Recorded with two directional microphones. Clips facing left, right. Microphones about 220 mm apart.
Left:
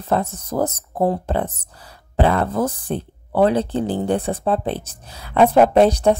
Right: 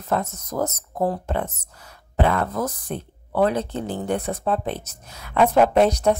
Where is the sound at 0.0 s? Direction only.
30° left (ahead or behind).